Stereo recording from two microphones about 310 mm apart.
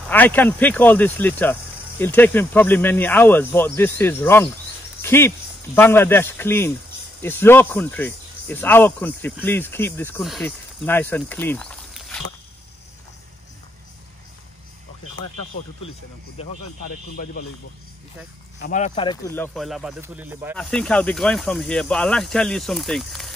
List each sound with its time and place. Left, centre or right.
0.1 s speech: centre
5.0 s a sound: centre
5.8 s speech: centre
16.4 s speech: centre
18.6 s speech: left; by 23.3 s centre